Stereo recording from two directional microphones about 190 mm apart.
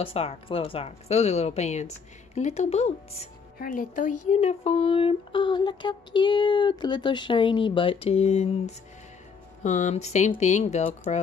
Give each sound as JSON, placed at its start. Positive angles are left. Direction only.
{"t": 0.0, "sound": "speech", "side_deg": 30}
{"t": 3.5, "sound": "speech", "side_deg": 45}